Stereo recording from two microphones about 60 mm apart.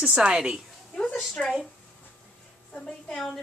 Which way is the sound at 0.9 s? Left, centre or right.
Left.